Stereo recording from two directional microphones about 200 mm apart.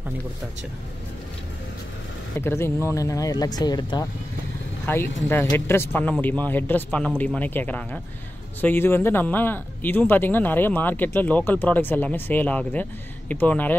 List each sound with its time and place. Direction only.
2.4 s speech: 10° left (ahead or behind)